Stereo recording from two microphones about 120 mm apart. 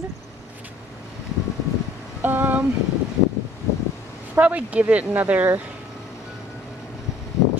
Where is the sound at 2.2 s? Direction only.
15° right (ahead or behind).